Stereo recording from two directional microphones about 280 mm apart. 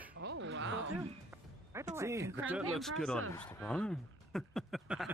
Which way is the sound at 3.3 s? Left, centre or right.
Centre.